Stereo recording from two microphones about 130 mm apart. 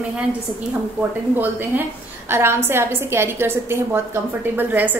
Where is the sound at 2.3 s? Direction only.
20° right (ahead or behind).